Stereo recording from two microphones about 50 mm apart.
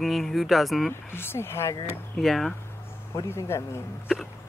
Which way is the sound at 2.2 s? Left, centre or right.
Centre.